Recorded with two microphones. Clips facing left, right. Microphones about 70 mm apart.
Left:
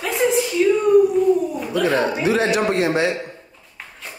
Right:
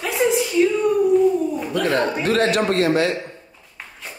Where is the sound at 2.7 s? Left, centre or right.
Centre.